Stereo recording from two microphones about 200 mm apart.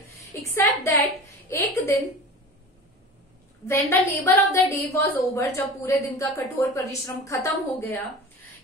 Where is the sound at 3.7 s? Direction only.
10° left (ahead or behind).